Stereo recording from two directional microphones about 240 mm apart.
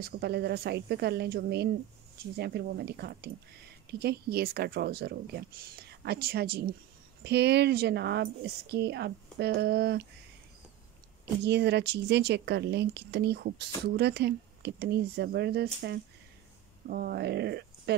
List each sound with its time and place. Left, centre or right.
0.0 s a woman's voice: right
11.4 s speech: right